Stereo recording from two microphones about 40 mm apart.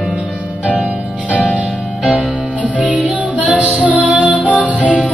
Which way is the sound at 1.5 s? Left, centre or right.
Right.